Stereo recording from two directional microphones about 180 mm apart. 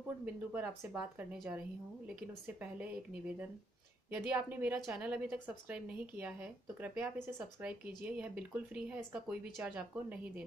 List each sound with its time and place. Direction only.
0.2 s a woman's voice: 10° right (ahead or behind)
4.1 s a woman's voice: 10° right (ahead or behind)